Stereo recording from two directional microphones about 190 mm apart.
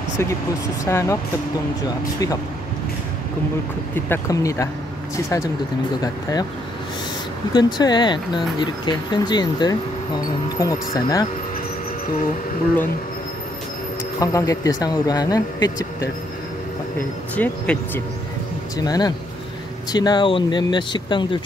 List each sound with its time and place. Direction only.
0.8 s speech: 15° left (ahead or behind)
3.9 s speech: 15° left (ahead or behind)
7.5 s speech: 20° left (ahead or behind)
14.2 s speech: 15° left (ahead or behind)
17.4 s speech: 10° left (ahead or behind)
18.8 s speech: 20° left (ahead or behind)